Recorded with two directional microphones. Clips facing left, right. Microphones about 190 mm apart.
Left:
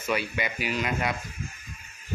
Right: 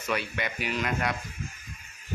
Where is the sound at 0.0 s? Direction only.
5° left (ahead or behind).